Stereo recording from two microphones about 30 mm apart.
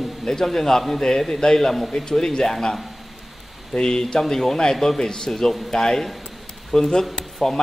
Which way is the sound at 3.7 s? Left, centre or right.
Left.